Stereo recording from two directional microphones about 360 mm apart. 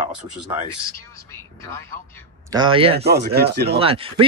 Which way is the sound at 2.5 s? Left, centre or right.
Centre.